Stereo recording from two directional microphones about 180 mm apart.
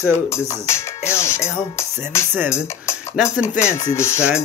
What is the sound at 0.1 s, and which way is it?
Speech, 15° left (ahead or behind).